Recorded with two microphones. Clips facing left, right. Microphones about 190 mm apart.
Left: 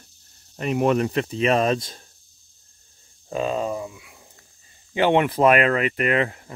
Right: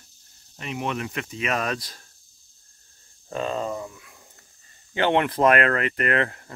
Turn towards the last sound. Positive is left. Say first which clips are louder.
# left 2 dB
turn(degrees=10)  # may be behind; listen again after turning